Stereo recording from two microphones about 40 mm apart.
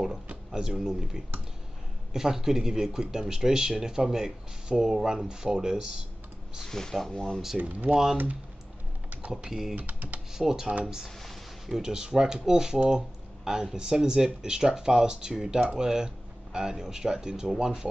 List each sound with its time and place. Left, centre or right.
0.5 s speech: centre
6.7 s speech: centre
7.5 s speech: right
9.5 s speech: centre
9.8 s speech: right
10.3 s speech: centre